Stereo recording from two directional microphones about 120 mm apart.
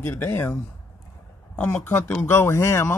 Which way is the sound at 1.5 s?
15° left (ahead or behind).